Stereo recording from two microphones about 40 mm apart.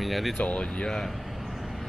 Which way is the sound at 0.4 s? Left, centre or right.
Left.